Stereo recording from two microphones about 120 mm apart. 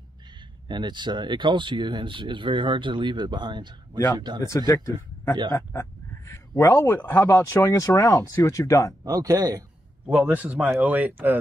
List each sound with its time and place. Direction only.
0.7 s speech: 40° right (ahead or behind)
4.4 s a man's voice: 25° left (ahead or behind)
9.0 s speech: 30° right (ahead or behind)
10.0 s a man's voice: 15° right (ahead or behind)